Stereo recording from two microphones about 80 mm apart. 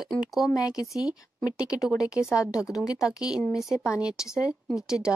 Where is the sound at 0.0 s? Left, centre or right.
Centre.